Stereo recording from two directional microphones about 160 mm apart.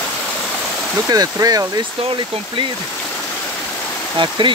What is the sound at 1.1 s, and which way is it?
Speech, 25° right (ahead or behind).